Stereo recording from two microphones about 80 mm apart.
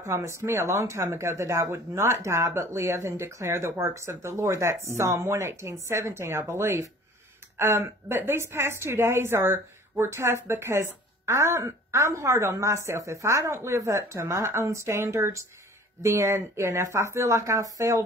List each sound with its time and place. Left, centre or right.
0.0 s a woman's voice: right